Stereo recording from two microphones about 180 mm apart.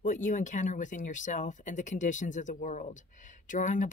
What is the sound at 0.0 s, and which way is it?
Speech, 45° left (ahead or behind).